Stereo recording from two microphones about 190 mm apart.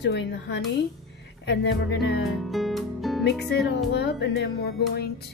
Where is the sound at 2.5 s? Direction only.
Centre (ahead or behind).